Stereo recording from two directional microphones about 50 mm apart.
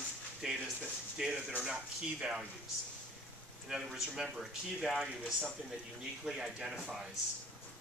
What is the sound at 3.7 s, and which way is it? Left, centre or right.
Speech, centre.